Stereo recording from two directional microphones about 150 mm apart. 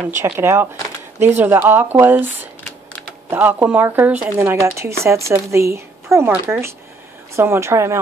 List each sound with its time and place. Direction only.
0.1 s speech: 15° right (ahead or behind)
3.3 s speech: 15° right (ahead or behind)